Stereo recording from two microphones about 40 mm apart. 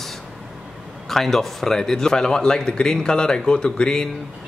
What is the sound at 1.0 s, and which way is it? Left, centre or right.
Speech, centre.